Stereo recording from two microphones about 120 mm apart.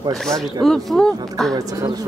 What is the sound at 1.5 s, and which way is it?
Speech, 30° right (ahead or behind).